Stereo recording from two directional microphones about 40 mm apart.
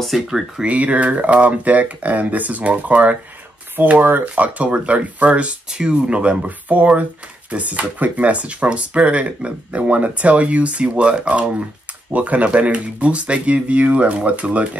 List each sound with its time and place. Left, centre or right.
0.1 s speech: centre
0.7 s speech: right
4.0 s speech: right
5.7 s speech: right